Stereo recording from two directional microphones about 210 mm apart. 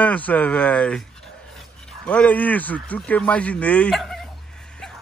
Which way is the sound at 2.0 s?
5° left (ahead or behind).